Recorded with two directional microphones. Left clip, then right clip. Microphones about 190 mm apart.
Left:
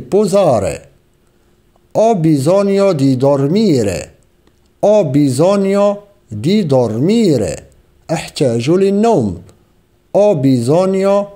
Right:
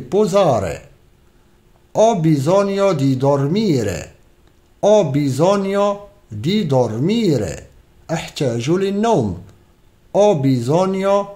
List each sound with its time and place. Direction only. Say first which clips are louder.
0.1 s a man's voice: left 3 dB; 30° left (ahead or behind)
1.9 s a man's voice: left 3 dB; 30° left (ahead or behind)